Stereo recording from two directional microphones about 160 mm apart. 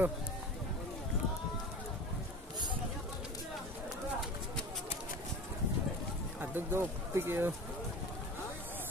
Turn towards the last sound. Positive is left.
turn(degrees=-15)  # may be behind; listen again after turning